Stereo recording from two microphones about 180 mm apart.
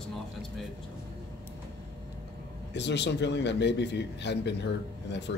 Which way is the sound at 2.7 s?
75° left (ahead or behind).